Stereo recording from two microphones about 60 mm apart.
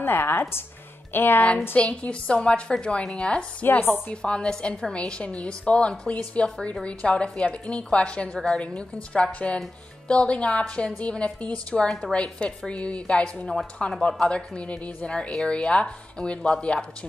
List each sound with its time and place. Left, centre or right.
0.0 s a woman's voice: left
1.8 s a woman's voice: centre
11.0 s a woman's voice: centre